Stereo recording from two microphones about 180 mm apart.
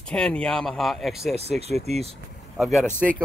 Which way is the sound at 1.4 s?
35° right (ahead or behind).